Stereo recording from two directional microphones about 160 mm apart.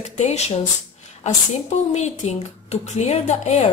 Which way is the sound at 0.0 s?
45° left (ahead or behind).